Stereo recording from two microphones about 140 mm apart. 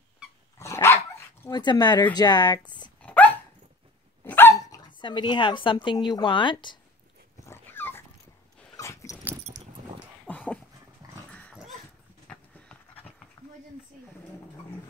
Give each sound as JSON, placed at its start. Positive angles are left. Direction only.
{"t": 0.6, "sound": "dog", "side_deg": 20}
{"t": 1.5, "sound": "speech", "side_deg": 30}
{"t": 3.0, "sound": "dog", "side_deg": 10}
{"t": 4.3, "sound": "speech", "side_deg": 15}
{"t": 7.4, "sound": "dog", "side_deg": 15}
{"t": 10.2, "sound": "dog", "side_deg": 10}
{"t": 12.3, "sound": "horse", "side_deg": 10}